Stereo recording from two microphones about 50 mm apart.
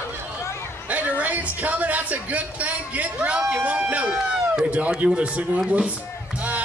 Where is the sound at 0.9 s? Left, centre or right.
Right.